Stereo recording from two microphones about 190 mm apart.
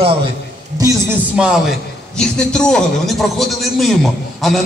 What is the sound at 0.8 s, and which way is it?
A man's voice, 10° right (ahead or behind).